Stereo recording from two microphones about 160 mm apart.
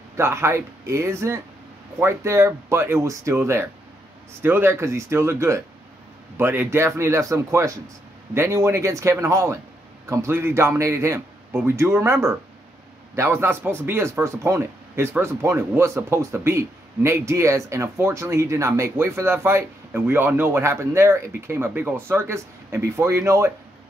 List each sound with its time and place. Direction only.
0.2 s speech: 15° right (ahead or behind)